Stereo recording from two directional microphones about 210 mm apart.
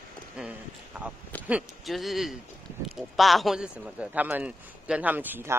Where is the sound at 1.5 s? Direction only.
Centre (ahead or behind).